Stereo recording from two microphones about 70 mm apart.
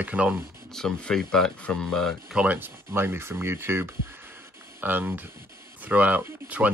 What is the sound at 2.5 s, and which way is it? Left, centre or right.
Speech, right.